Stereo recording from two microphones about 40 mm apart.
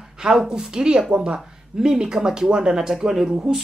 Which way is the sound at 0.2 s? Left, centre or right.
Centre.